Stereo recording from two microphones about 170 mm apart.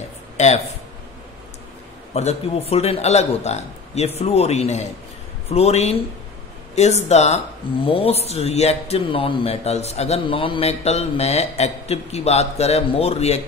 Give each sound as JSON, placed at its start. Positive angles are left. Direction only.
{"t": 0.4, "sound": "a man's voice", "side_deg": 40}
{"t": 2.1, "sound": "speech", "side_deg": 40}